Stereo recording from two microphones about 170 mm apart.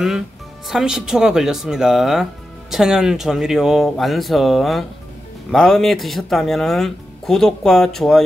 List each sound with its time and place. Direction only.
0.7 s speech: 5° right (ahead or behind)